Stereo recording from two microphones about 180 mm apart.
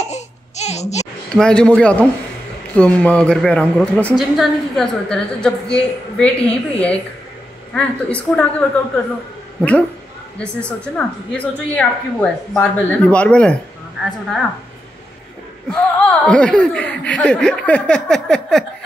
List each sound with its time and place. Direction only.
0.0 s a sound: 40° left (ahead or behind)
1.3 s a woman's voice: 5° left (ahead or behind)
15.7 s speech: 5° left (ahead or behind)